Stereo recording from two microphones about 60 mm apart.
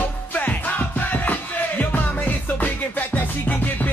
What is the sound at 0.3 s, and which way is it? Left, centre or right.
Music, left.